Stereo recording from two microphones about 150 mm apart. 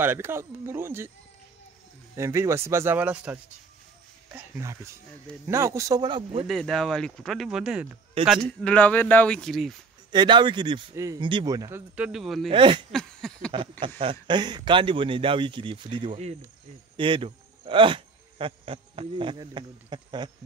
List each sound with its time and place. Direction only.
0.0 s speech: 15° right (ahead or behind)
2.1 s speech: 20° right (ahead or behind)
6.4 s speech: centre (ahead or behind)
8.2 s speech: 40° right (ahead or behind)
8.5 s speech: 10° left (ahead or behind)
10.1 s speech: 30° right (ahead or behind)
11.9 s speech: 5° right (ahead or behind)
12.4 s speech: 35° right (ahead or behind)
12.9 s a sound: 5° left (ahead or behind)
13.5 s speech: 35° right (ahead or behind)
16.1 s speech: 45° right (ahead or behind)
16.9 s speech: 35° right (ahead or behind)